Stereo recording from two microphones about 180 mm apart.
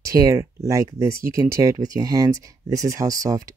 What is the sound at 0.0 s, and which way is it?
Speech, 20° right (ahead or behind).